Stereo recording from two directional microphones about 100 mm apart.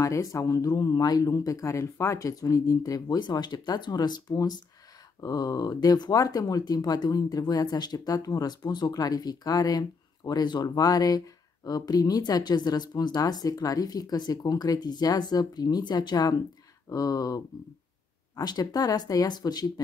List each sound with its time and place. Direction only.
0.0 s speech: 35° left (ahead or behind)